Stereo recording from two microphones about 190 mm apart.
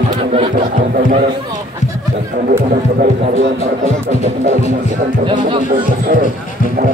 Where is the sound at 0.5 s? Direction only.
45° right (ahead or behind).